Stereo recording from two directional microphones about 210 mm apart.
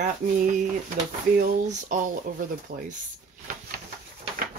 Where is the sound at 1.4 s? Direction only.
40° right (ahead or behind).